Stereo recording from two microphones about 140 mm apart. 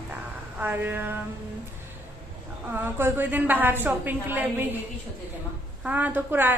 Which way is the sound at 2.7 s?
15° right (ahead or behind).